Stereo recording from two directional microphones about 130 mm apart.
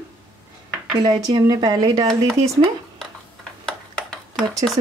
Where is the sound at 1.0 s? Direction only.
30° right (ahead or behind).